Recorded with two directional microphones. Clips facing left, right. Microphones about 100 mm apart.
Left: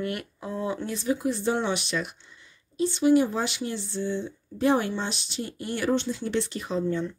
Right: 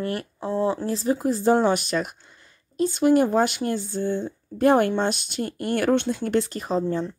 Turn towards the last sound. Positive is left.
turn(degrees=-35)  # may be behind; listen again after turning